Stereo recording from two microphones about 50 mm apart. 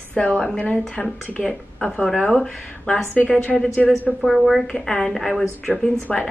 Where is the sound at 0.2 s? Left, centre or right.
Left.